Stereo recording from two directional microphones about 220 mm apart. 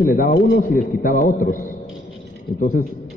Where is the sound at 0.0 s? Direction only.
40° left (ahead or behind).